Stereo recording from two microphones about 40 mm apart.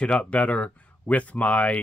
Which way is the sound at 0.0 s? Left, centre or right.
Left.